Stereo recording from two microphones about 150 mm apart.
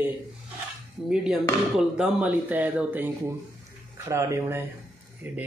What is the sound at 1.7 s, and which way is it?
Speech, 5° right (ahead or behind).